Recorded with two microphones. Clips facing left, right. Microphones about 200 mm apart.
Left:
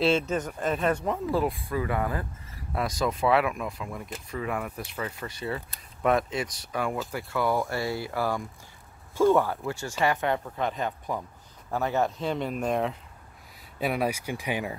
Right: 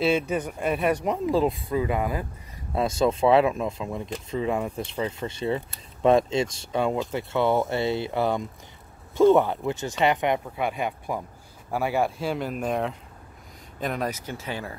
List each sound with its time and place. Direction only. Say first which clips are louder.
0.3 s speech: right 2 dB; 10° right (ahead or behind)
13.7 s speech: left 1 dB; 10° left (ahead or behind)